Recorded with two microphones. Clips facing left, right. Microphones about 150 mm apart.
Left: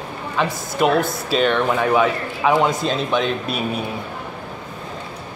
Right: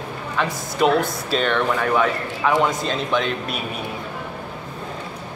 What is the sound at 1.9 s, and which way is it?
A man's voice, 15° left (ahead or behind).